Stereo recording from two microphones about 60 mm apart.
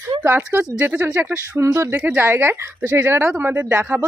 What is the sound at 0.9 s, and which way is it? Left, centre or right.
Speech, right.